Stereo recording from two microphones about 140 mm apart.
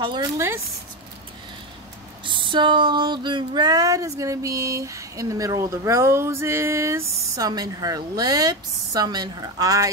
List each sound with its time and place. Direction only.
0.0 s a woman's voice: 30° right (ahead or behind)
2.2 s speech: 35° right (ahead or behind)